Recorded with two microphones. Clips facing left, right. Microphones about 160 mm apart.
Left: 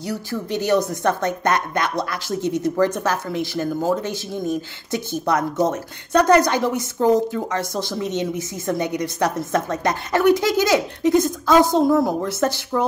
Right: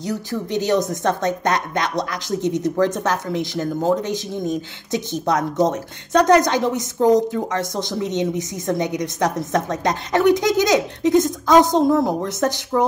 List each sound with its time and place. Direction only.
0.0 s a woman's voice: 20° right (ahead or behind)